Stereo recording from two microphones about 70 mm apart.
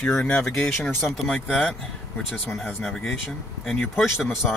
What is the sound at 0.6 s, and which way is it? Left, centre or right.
A man's voice, centre.